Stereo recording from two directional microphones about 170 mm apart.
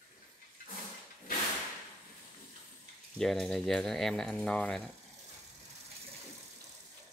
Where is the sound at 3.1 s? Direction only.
Centre (ahead or behind).